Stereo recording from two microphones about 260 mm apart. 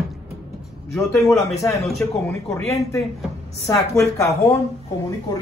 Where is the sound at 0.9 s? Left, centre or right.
Centre.